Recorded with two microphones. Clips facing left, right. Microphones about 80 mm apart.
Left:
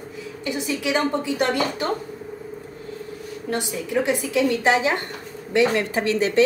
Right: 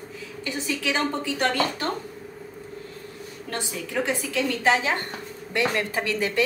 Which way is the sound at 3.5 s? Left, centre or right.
Centre.